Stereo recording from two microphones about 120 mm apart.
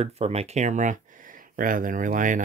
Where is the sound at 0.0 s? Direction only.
60° right (ahead or behind).